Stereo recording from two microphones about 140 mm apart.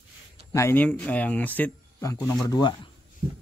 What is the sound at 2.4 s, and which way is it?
Speech, 25° left (ahead or behind).